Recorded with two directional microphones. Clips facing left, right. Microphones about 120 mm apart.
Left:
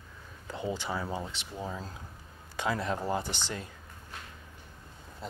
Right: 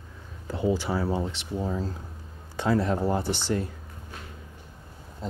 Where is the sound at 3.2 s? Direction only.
10° right (ahead or behind).